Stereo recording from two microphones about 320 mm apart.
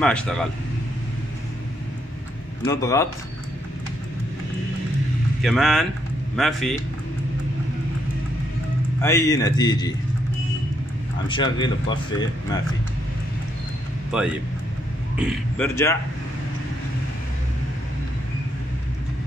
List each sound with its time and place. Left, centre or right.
0.0 s a man's voice: centre
2.6 s speech: centre
5.4 s a man's voice: centre
9.0 s speech: centre
11.2 s speech: centre
14.1 s a man's voice: centre